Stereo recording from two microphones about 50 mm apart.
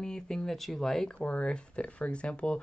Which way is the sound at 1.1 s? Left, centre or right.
Left.